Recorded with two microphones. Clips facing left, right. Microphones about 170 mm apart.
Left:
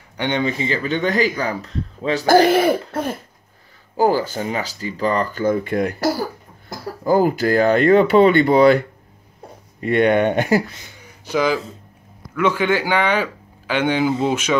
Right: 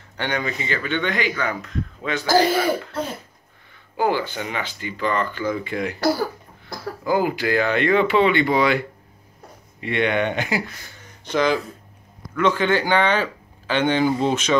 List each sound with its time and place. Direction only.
0.2 s speech: 25° left (ahead or behind)
2.2 s speech: 60° left (ahead or behind)
3.9 s speech: 40° left (ahead or behind)
7.1 s speech: 40° left (ahead or behind)
10.8 s a sound: 10° left (ahead or behind)
12.4 s speech: 10° left (ahead or behind)